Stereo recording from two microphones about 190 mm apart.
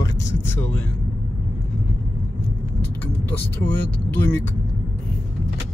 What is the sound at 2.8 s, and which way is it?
Speech, 10° left (ahead or behind).